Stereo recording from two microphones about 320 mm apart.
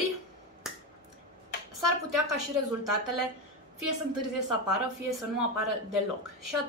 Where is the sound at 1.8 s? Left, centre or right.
Right.